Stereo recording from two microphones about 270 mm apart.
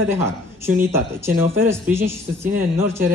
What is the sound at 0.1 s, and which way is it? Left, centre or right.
Speech, centre.